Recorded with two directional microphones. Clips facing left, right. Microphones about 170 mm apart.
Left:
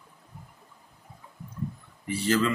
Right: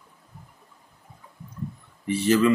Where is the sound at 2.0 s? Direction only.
20° right (ahead or behind).